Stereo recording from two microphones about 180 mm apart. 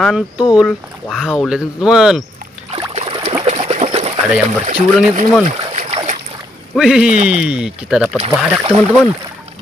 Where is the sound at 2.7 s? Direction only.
35° right (ahead or behind).